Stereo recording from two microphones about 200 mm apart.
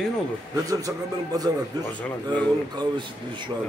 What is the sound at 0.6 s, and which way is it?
Speech, 15° right (ahead or behind).